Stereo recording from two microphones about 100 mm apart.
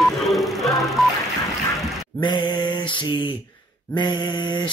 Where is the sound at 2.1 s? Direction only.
50° left (ahead or behind).